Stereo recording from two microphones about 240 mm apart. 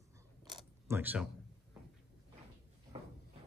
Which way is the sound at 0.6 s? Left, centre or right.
Centre.